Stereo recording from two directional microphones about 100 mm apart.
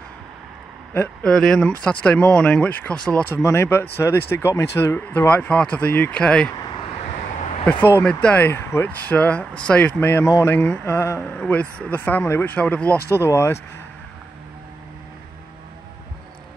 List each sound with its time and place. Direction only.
1.2 s speech: 5° left (ahead or behind)
3.4 s speech: 25° left (ahead or behind)
8.0 s speech: 10° left (ahead or behind)
9.9 s speech: 20° left (ahead or behind)